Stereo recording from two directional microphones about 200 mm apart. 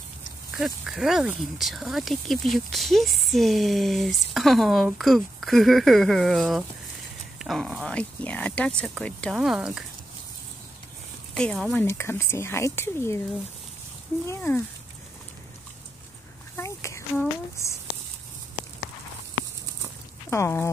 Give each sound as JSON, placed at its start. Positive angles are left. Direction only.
{"t": 0.8, "sound": "speech", "side_deg": 0}
{"t": 11.3, "sound": "speech", "side_deg": 0}
{"t": 14.2, "sound": "speech", "side_deg": 15}
{"t": 16.5, "sound": "speech", "side_deg": 15}
{"t": 20.2, "sound": "speech", "side_deg": 15}